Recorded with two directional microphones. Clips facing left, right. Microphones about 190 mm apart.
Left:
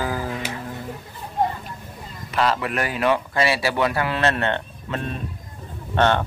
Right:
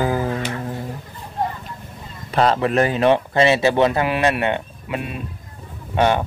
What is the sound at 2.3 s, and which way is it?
Speech, 30° right (ahead or behind).